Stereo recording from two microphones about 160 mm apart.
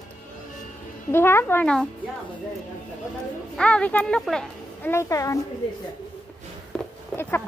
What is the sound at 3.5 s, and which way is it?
Speech, 5° left (ahead or behind).